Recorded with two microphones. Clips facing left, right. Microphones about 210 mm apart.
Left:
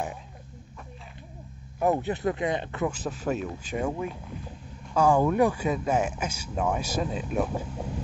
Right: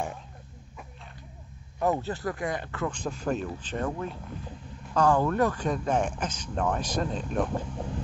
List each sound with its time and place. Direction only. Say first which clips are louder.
1.8 s speech: left 2 dB; 15° left (ahead or behind)
2.9 s speech: even; 5° left (ahead or behind)